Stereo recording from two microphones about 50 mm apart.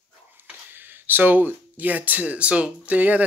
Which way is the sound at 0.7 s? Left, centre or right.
Right.